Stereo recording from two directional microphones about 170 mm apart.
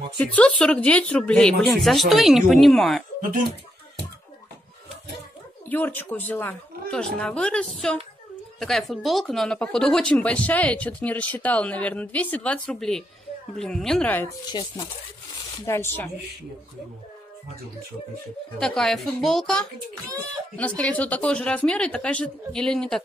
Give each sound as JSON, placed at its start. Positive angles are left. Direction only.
{"t": 0.2, "sound": "a child's voice", "side_deg": 5}
{"t": 5.7, "sound": "a child's voice", "side_deg": 10}
{"t": 14.5, "sound": "speech", "side_deg": 25}
{"t": 15.6, "sound": "speech", "side_deg": 15}
{"t": 18.6, "sound": "a child's voice", "side_deg": 0}